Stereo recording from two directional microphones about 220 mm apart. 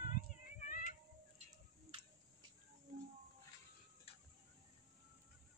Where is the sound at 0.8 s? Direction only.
35° right (ahead or behind).